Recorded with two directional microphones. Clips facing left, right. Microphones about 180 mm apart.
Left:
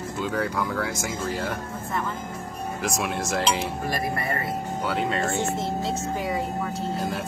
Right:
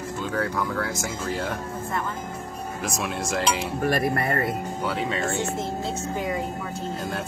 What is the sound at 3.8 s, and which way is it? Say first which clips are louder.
Speech: right 4 dB; 60° right (ahead or behind).